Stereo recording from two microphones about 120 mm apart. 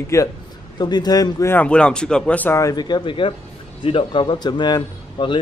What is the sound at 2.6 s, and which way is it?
A man's voice, 35° left (ahead or behind).